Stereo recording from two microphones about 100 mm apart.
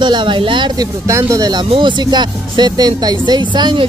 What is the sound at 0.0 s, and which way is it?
Speech, 50° right (ahead or behind).